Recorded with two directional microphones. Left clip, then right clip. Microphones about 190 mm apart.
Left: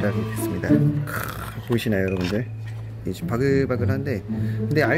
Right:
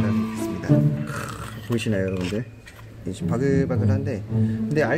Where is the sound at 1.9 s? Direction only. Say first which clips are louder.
Left 1 dB; 35° left (ahead or behind).